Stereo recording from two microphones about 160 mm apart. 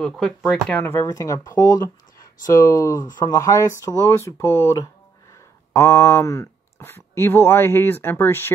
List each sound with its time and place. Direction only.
0.2 s speech: 5° left (ahead or behind)